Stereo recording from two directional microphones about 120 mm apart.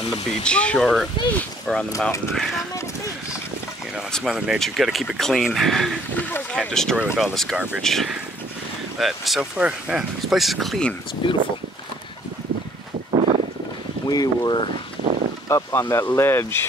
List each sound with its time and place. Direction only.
0.4 s speech: 10° left (ahead or behind)
4.1 s speech: 5° right (ahead or behind)
7.5 s speech: 10° right (ahead or behind)
7.8 s speech: centre (ahead or behind)
11.2 s speech: 45° left (ahead or behind)
13.1 s a sound: 60° right (ahead or behind)
14.0 s speech: 35° left (ahead or behind)
15.4 s speech: 25° left (ahead or behind)